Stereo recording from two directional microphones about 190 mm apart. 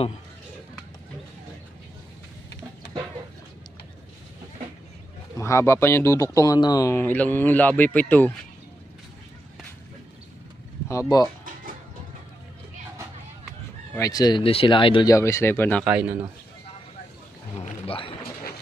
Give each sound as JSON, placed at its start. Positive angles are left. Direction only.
{"t": 5.4, "sound": "speech", "side_deg": 15}
{"t": 10.9, "sound": "speech", "side_deg": 20}
{"t": 13.9, "sound": "speech", "side_deg": 20}
{"t": 15.8, "sound": "a man's voice", "side_deg": -10}
{"t": 17.6, "sound": "a sound", "side_deg": 30}